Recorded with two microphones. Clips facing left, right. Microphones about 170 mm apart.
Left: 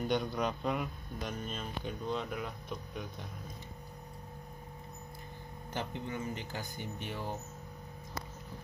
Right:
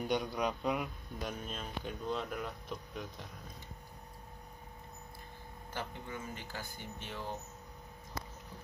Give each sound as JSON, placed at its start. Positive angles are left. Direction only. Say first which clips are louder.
{"t": 0.0, "sound": "speech", "louder": "left 1 dB", "side_deg": -10}
{"t": 5.7, "sound": "speech", "louder": "left 4 dB", "side_deg": 20}